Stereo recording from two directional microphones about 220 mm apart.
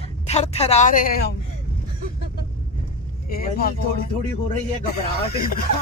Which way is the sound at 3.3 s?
40° left (ahead or behind).